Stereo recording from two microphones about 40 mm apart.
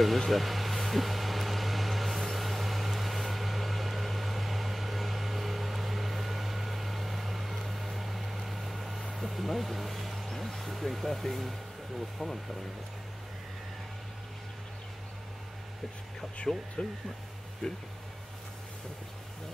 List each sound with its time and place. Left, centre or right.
0.0 s vehicle: centre
9.1 s speech: centre
12.2 s speech: centre
16.5 s speech: centre